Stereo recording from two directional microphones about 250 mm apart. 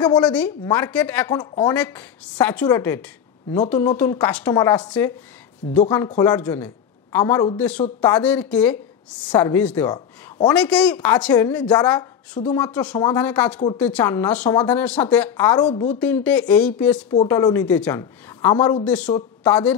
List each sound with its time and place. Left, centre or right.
0.2 s a woman's voice: centre
1.4 s a woman's voice: centre
1.8 s a woman's voice: centre
9.8 s a sound: centre
10.5 s a woman's voice: centre
12.6 s a woman's voice: centre; by 16.0 s left
16.0 s a woman's voice: centre